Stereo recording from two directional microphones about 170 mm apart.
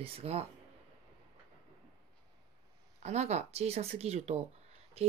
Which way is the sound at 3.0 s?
40° right (ahead or behind).